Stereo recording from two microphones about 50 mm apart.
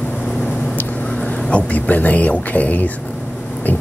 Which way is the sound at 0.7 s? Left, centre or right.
Left.